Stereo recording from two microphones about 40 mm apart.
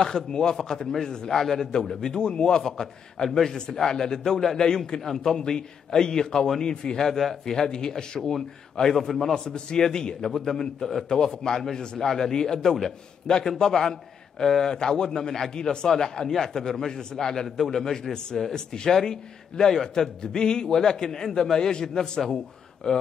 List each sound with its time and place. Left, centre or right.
0.0 s a man's voice: centre
7.1 s a man's voice: centre
9.5 s a man's voice: centre